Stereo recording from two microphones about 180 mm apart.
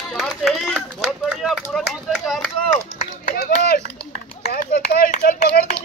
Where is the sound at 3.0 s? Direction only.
55° left (ahead or behind).